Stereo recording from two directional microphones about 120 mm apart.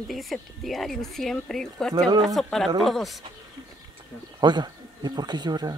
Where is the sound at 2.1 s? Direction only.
35° right (ahead or behind).